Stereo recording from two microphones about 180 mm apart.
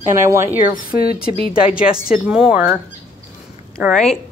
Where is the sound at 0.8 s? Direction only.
55° left (ahead or behind).